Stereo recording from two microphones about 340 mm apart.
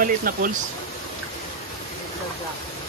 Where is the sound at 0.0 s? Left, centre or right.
Right.